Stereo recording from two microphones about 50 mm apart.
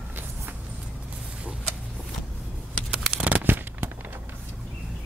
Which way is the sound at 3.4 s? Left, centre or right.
Right.